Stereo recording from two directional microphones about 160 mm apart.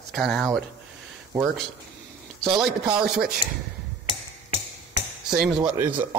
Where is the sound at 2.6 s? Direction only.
5° right (ahead or behind).